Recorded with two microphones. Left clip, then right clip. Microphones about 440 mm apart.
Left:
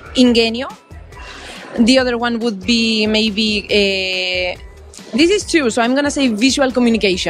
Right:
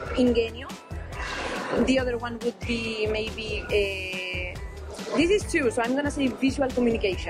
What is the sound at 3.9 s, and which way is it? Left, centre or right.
Speech, left.